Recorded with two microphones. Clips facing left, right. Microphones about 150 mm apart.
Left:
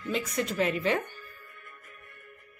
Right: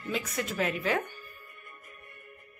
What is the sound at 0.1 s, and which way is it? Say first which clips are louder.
Speech: left 3 dB; centre (ahead or behind).